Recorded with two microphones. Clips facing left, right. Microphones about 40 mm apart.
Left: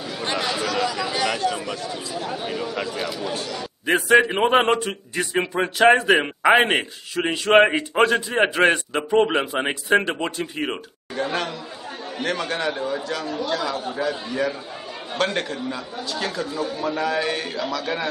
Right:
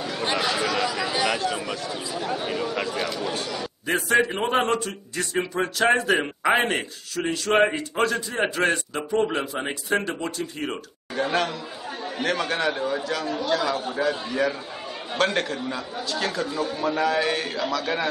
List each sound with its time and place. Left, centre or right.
0.0 s speech: centre
3.8 s a man's voice: left
11.1 s a man's voice: centre